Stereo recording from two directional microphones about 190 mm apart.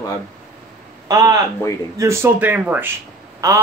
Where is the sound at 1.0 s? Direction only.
20° right (ahead or behind).